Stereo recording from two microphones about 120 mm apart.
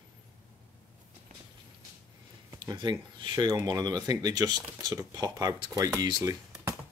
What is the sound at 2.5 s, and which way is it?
Speech, 40° right (ahead or behind).